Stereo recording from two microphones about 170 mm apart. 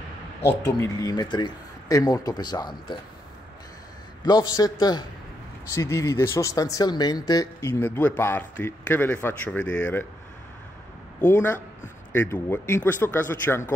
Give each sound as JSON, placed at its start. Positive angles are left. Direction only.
{"t": 0.6, "sound": "speech", "side_deg": 20}
{"t": 4.2, "sound": "speech", "side_deg": 25}
{"t": 11.1, "sound": "speech", "side_deg": 10}